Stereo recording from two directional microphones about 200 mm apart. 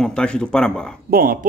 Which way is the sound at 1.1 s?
45° right (ahead or behind).